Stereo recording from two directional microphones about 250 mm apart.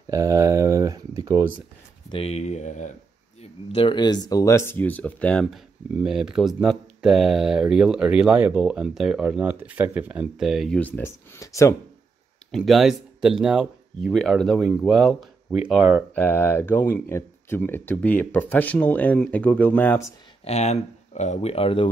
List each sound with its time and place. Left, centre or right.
0.0 s a sound: centre
2.0 s speech: left
12.4 s speech: centre
16.2 s speech: centre
20.4 s speech: left